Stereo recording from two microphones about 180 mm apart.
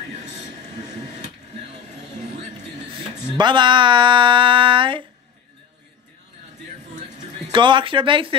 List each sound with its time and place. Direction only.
3.3 s speech: 25° right (ahead or behind)
7.0 s music: 40° right (ahead or behind)
7.5 s speech: 25° right (ahead or behind)